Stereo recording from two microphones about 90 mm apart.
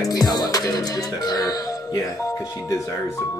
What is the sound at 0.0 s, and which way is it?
Music, 45° left (ahead or behind).